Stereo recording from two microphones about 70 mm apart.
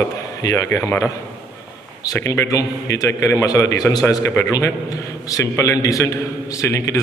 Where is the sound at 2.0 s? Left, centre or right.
Left.